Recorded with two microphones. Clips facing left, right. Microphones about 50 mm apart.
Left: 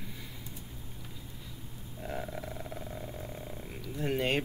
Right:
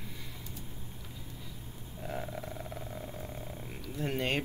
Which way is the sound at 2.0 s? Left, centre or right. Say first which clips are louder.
Left 1 dB; centre.